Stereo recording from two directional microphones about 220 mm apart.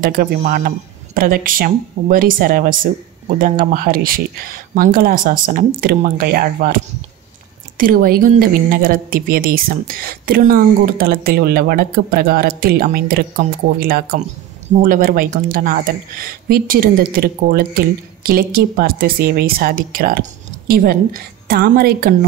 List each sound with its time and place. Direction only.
0.0 s a woman's voice: 40° right (ahead or behind)